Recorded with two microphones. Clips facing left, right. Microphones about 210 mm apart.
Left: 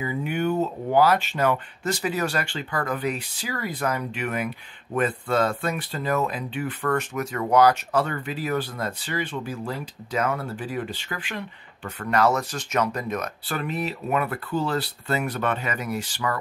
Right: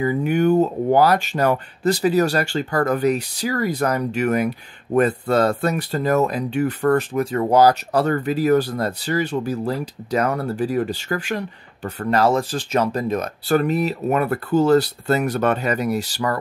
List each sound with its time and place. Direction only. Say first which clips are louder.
0.0 s speech: right 8 dB; 45° right (ahead or behind)